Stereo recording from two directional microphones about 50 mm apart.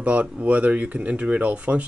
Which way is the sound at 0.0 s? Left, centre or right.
Right.